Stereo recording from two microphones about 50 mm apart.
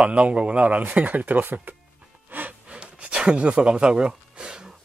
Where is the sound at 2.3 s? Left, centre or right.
Right.